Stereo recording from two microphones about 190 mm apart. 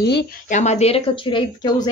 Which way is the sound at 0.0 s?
60° left (ahead or behind).